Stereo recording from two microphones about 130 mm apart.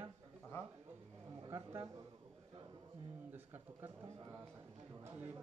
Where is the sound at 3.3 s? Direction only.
15° right (ahead or behind).